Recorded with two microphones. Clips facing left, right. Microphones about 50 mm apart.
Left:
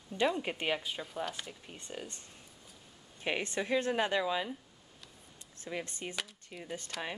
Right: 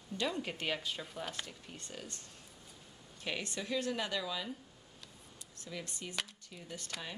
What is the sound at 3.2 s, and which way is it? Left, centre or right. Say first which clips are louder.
Speech: left 5 dB; left.